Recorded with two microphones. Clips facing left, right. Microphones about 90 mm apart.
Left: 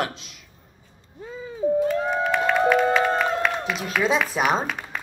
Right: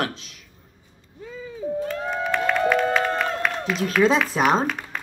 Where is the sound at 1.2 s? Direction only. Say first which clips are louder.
Left 1 dB; 30° left (ahead or behind).